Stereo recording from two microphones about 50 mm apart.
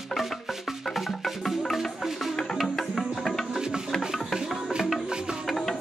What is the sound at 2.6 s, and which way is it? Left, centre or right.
Music, centre.